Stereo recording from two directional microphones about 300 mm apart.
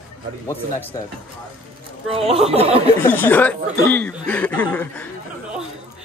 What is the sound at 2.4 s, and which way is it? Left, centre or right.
Speech, centre.